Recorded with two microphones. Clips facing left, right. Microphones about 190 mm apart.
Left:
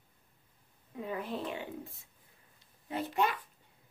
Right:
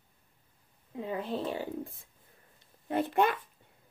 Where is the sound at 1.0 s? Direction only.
25° right (ahead or behind).